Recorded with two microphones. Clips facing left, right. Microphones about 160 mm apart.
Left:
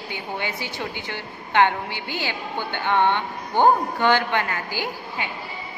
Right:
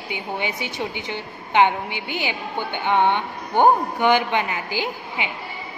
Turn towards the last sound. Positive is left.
turn(degrees=-15)  # may be behind; listen again after turning